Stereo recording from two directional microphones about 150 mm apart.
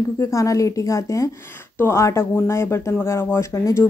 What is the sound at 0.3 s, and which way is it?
Speech, 20° left (ahead or behind).